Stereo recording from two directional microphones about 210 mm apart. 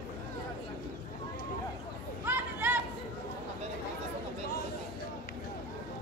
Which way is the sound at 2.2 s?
10° right (ahead or behind).